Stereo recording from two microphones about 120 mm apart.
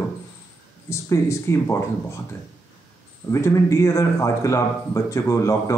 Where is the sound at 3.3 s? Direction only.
25° left (ahead or behind).